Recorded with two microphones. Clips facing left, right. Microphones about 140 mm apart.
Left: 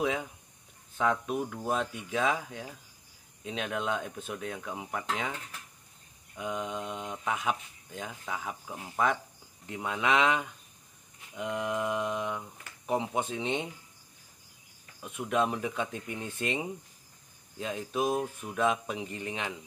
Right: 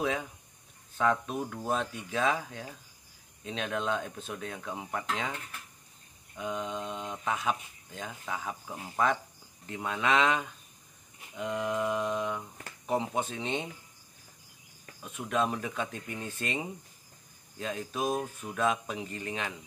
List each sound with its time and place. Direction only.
0.0 s speech: 15° left (ahead or behind)
15.0 s speech: 15° left (ahead or behind)